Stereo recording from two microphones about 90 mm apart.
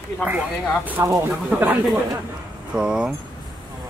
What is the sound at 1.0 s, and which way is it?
Speech, 35° right (ahead or behind).